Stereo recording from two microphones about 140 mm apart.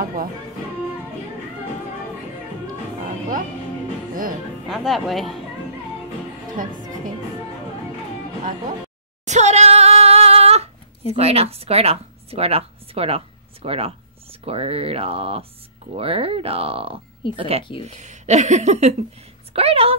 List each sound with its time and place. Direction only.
0.0 s music: 90° right
4.1 s music: 75° right (ahead or behind)
4.6 s speech: centre (ahead or behind)
9.2 s a sound: 55° right (ahead or behind)
11.1 s a woman's voice: 45° right (ahead or behind)
17.8 s speech: 60° right (ahead or behind)